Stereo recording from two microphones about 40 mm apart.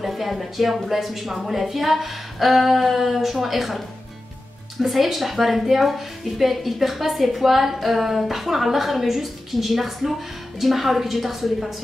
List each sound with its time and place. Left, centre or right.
0.0 s a woman's voice: centre
4.8 s a woman's voice: centre